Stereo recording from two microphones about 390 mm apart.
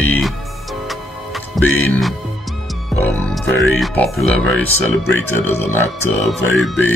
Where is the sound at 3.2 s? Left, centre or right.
Centre.